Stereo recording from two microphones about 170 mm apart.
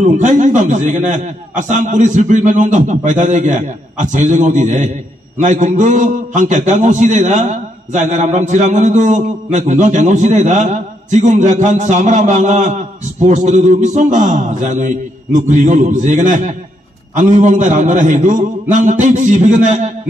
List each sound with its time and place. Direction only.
0.0 s a man's voice: 45° right (ahead or behind)